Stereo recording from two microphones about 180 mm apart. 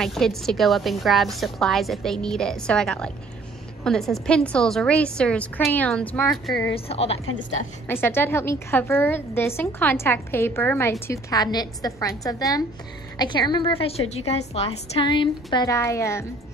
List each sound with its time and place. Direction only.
0.0 s a woman's voice: centre (ahead or behind)
6.7 s speech: 35° left (ahead or behind)
7.9 s a woman's voice: 10° left (ahead or behind)